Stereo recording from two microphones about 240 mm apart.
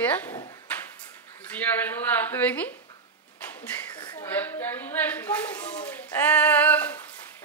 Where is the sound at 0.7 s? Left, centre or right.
Centre.